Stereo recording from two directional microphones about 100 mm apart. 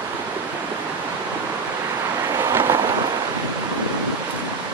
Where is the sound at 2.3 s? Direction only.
30° right (ahead or behind).